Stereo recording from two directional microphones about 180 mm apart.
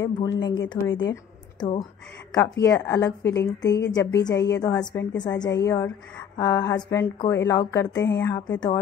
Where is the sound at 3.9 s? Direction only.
20° left (ahead or behind).